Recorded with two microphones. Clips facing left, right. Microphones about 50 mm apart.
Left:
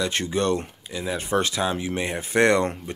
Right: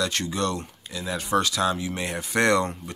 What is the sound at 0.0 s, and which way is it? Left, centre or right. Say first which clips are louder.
Speech: left 2 dB; left.